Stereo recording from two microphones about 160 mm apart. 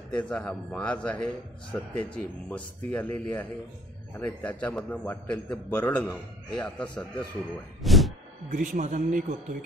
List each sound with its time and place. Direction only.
0.1 s a man's voice: 5° left (ahead or behind)
7.8 s a sound: centre (ahead or behind)
8.5 s a man's voice: 55° right (ahead or behind)